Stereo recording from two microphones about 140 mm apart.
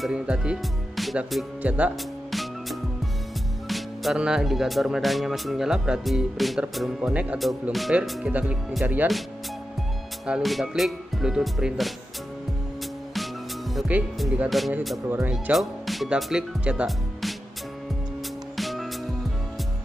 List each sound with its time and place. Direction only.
0.0 s speech: 5° right (ahead or behind)
3.6 s speech: centre (ahead or behind)
10.2 s speech: 5° right (ahead or behind)
13.9 s speech: 10° right (ahead or behind)
15.0 s speech: 15° right (ahead or behind)
15.3 s speech: centre (ahead or behind)
18.6 s music: centre (ahead or behind)